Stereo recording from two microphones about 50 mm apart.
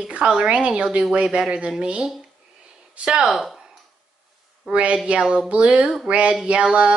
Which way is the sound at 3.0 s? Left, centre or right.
Centre.